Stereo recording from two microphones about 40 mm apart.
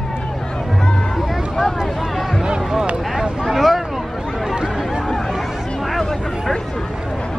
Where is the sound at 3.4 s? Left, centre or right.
Centre.